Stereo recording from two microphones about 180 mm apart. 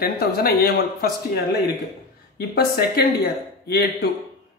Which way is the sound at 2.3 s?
60° left (ahead or behind).